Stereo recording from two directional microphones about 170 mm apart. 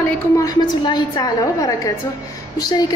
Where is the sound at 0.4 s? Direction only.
25° left (ahead or behind).